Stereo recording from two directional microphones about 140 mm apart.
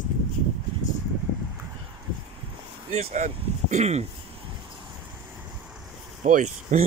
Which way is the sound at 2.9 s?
55° right (ahead or behind).